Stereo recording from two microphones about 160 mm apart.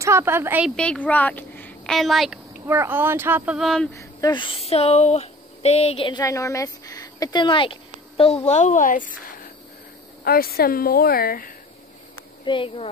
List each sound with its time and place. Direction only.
0.0 s speech: 15° right (ahead or behind)
0.7 s speech: 5° left (ahead or behind)
2.6 s speech: 15° right (ahead or behind)
3.9 s speech: 20° left (ahead or behind)
6.2 s a woman's voice: 20° left (ahead or behind); by 9.1 s 55° left (ahead or behind)
10.2 s speech: 70° left (ahead or behind)
12.4 s speech: 35° left (ahead or behind)